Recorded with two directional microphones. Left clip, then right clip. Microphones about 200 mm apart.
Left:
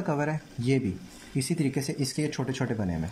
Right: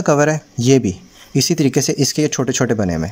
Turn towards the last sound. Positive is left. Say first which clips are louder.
# right 14 dB
turn(degrees=-45)  # may be behind; listen again after turning